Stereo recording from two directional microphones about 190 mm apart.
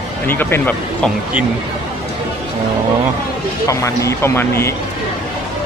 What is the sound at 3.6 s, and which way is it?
Speech, 15° left (ahead or behind).